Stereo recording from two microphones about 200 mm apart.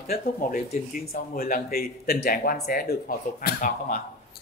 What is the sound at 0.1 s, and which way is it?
Speech, 45° left (ahead or behind).